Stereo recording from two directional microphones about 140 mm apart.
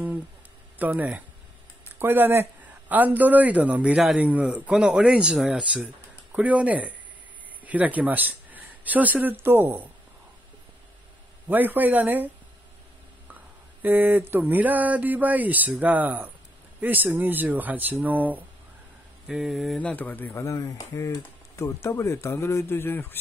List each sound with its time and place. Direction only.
0.7 s speech: 10° right (ahead or behind)
11.4 s speech: 15° right (ahead or behind)
13.8 s speech: 15° right (ahead or behind); by 23.1 s 15° left (ahead or behind)